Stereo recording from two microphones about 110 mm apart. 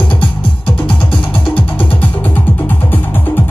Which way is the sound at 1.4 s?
15° left (ahead or behind).